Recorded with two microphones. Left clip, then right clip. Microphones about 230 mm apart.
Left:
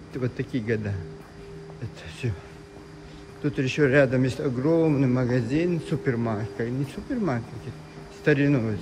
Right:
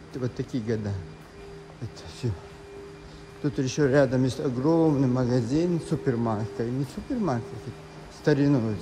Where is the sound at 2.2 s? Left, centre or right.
Right.